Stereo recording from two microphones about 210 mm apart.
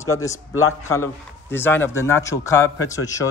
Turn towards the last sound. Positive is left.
turn(degrees=15)  # may be behind; listen again after turning